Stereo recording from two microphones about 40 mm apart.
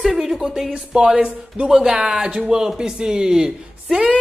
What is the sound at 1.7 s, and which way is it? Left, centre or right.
Speech, centre.